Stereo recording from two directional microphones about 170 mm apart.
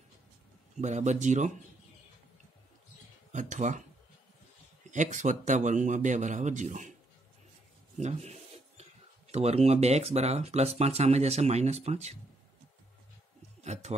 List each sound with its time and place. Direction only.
0.7 s speech: 45° right (ahead or behind)
3.3 s speech: 45° right (ahead or behind)
4.9 s speech: 45° right (ahead or behind)
8.0 s a sound: 40° right (ahead or behind)
9.3 s speech: 40° right (ahead or behind)
13.6 s speech: 40° right (ahead or behind)